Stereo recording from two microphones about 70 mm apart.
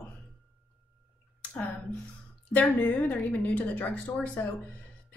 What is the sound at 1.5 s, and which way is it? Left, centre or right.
A woman's voice, left.